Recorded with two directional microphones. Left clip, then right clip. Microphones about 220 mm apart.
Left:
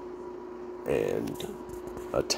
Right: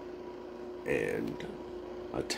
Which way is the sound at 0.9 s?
30° left (ahead or behind).